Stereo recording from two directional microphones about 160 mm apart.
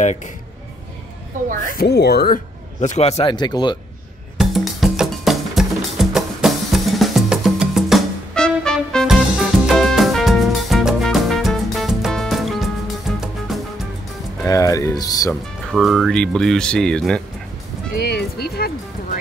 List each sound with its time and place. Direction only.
1.7 s speech: 80° left
2.8 s speech: 45° left (ahead or behind)
3.3 s speech: 25° left (ahead or behind)
4.4 s music: centre (ahead or behind)
14.4 s music: 20° left (ahead or behind)
15.7 s speech: centre (ahead or behind)
17.9 s music: 80° left